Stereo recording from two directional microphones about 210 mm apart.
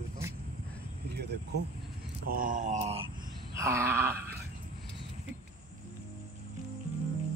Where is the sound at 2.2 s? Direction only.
40° right (ahead or behind).